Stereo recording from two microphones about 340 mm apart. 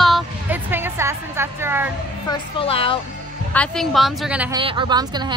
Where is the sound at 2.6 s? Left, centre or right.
Centre.